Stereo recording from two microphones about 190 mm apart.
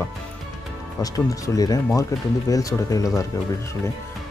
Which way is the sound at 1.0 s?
20° left (ahead or behind).